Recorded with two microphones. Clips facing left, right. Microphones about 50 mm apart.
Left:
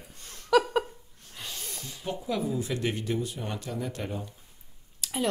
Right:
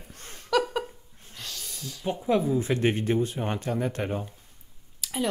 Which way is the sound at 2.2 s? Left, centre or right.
Right.